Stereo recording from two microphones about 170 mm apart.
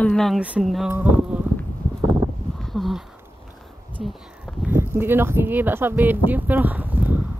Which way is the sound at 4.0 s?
Centre (ahead or behind).